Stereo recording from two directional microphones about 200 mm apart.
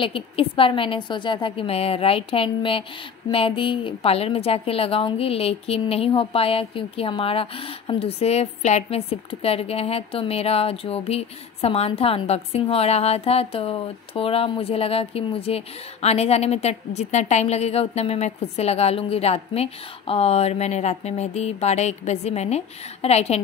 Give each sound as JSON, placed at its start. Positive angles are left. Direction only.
{"t": 0.0, "sound": "a woman's voice", "side_deg": 25}